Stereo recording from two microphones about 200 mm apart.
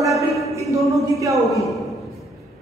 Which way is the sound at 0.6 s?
15° right (ahead or behind).